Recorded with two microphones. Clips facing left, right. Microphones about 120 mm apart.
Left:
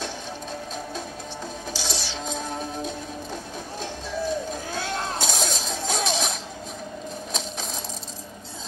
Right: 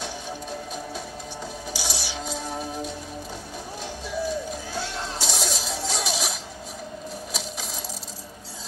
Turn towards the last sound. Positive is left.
turn(degrees=-5)  # may be behind; listen again after turning